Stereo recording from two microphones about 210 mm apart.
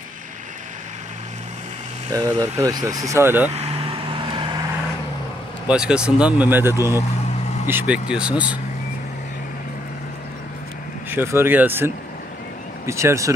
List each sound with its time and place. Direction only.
2.1 s speech: 15° right (ahead or behind)
3.4 s vehicle: 30° right (ahead or behind)
5.7 s speech: 5° right (ahead or behind)
11.1 s speech: 10° right (ahead or behind)